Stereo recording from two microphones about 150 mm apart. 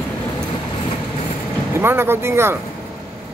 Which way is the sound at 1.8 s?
15° right (ahead or behind).